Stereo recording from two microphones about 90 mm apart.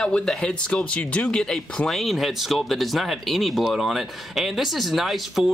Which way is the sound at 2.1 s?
Centre (ahead or behind).